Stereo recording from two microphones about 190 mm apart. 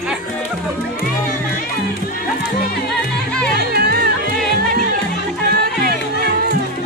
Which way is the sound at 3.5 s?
55° right (ahead or behind).